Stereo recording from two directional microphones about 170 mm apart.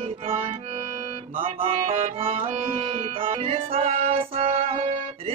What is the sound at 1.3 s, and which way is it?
Music, 35° right (ahead or behind).